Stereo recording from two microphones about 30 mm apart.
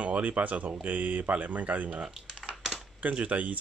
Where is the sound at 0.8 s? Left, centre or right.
Right.